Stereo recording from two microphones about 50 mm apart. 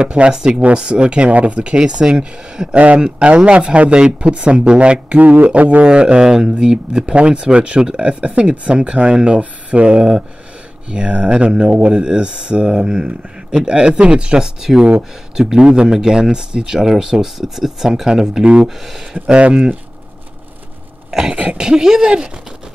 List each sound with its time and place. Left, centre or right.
0.0 s speech: right
21.1 s speech: centre